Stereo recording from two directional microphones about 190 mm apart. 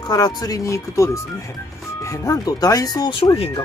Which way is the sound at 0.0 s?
20° left (ahead or behind).